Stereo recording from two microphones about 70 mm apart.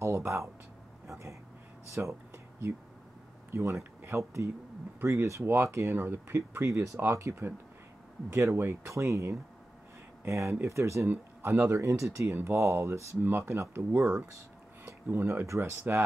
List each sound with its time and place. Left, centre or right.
0.0 s a sound: right
3.5 s speech: right
11.1 s speech: right